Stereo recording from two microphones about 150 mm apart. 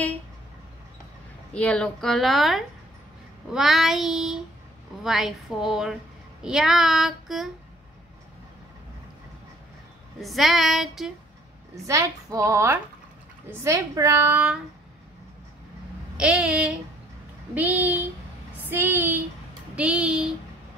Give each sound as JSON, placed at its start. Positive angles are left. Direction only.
{"t": 1.5, "sound": "a woman's voice", "side_deg": 10}
{"t": 10.2, "sound": "a woman's voice", "side_deg": 0}
{"t": 11.7, "sound": "a woman's voice", "side_deg": -20}
{"t": 16.2, "sound": "a woman's voice", "side_deg": -5}